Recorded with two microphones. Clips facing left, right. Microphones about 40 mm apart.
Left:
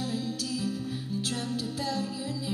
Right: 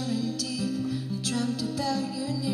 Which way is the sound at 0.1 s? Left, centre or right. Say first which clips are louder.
Right 2 dB; left.